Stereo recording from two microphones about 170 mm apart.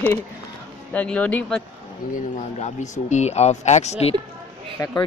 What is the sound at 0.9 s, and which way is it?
Speech, 5° left (ahead or behind).